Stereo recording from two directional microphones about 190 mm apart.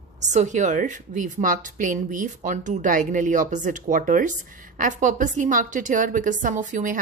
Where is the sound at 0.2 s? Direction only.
40° right (ahead or behind).